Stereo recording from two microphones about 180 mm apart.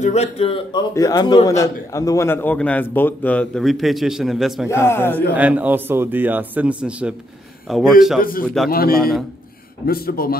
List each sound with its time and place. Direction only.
0.0 s speech: 35° left (ahead or behind)
0.9 s a man's voice: 20° left (ahead or behind); by 4.6 s centre (ahead or behind)
4.6 s a man's voice: 15° left (ahead or behind)
5.3 s a man's voice: 10° right (ahead or behind)
8.2 s a man's voice: 50° left (ahead or behind)